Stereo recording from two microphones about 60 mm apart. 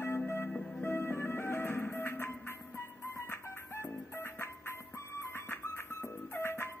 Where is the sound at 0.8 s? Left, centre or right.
Left.